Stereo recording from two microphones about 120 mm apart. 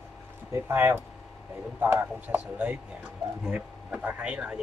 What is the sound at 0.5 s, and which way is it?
Speech, 20° right (ahead or behind).